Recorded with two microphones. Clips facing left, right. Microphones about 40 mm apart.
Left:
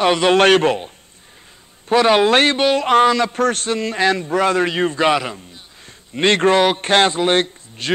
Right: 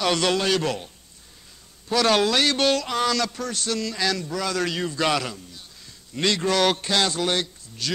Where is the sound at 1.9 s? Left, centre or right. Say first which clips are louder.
Left 7 dB; left.